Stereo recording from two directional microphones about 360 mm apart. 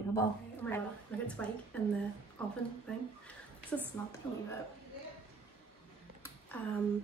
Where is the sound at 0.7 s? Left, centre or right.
Centre.